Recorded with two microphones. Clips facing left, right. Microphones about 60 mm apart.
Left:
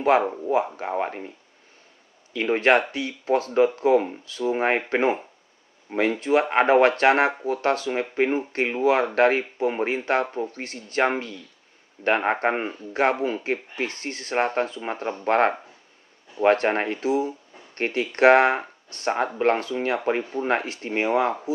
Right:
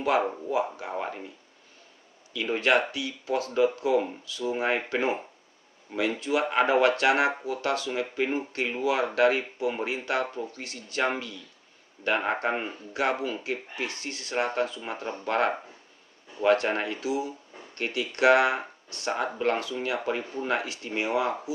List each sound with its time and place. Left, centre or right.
0.2 s speech: centre
0.7 s speech: left
2.3 s speech: left